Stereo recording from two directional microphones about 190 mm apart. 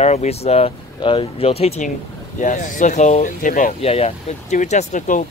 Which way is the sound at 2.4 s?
45° left (ahead or behind).